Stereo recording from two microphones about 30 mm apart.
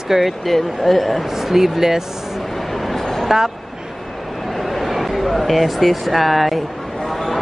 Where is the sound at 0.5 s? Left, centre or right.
Centre.